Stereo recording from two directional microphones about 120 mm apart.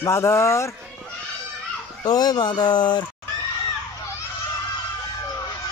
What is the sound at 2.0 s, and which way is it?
Speech, 35° left (ahead or behind).